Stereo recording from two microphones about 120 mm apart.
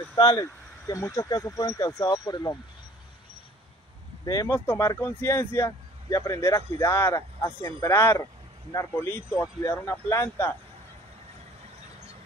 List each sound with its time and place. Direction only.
0.1 s a man's voice: 30° left (ahead or behind)
4.5 s a man's voice: 25° left (ahead or behind)